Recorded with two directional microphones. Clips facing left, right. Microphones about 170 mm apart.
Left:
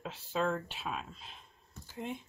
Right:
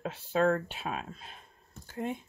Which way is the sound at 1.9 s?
50° right (ahead or behind).